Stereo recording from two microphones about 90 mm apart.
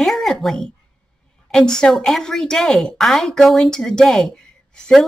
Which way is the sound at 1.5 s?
10° left (ahead or behind).